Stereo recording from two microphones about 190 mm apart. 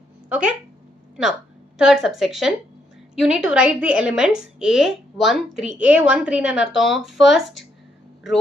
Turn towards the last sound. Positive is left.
turn(degrees=0)  # may be behind; listen again after turning